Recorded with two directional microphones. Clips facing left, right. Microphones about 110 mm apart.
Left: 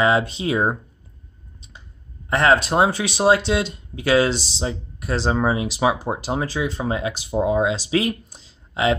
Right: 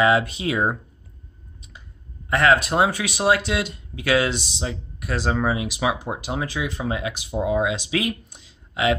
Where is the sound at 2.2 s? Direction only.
30° left (ahead or behind).